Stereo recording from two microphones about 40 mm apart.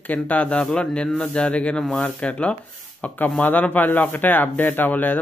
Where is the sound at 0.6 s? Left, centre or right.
Centre.